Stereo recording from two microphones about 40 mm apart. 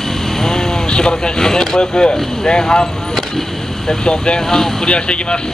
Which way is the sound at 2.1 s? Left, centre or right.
Centre.